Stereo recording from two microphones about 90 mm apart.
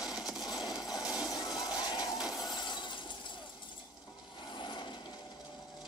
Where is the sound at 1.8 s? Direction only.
50° left (ahead or behind).